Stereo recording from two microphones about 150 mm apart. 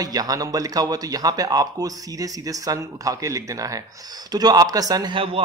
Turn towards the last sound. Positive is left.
turn(degrees=-35)  # may be behind; listen again after turning